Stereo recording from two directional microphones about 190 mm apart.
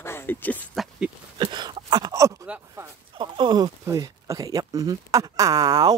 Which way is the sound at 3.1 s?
25° right (ahead or behind).